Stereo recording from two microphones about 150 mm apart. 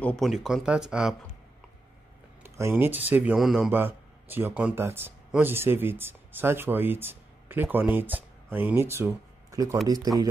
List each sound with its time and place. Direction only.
0.0 s speech: 5° left (ahead or behind)
2.4 s speech: 15° right (ahead or behind); by 3.7 s centre (ahead or behind)
3.7 s speech: 15° right (ahead or behind)